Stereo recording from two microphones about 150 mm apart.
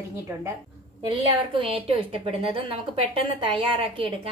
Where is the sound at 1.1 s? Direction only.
35° right (ahead or behind).